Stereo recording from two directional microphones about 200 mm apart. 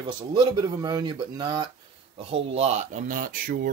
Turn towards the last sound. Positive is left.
turn(degrees=-45)  # may be behind; listen again after turning